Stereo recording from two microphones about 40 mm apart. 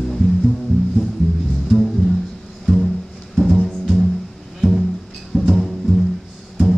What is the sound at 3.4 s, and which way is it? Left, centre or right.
Music, centre.